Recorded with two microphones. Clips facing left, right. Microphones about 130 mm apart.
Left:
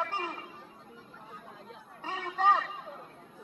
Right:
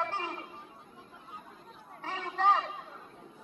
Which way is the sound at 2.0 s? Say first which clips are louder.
Even; 15° left (ahead or behind).